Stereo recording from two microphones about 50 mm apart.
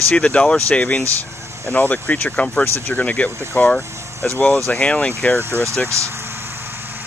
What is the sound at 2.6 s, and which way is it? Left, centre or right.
Speech, left.